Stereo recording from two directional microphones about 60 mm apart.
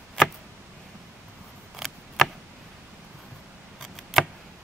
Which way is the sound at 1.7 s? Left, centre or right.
Centre.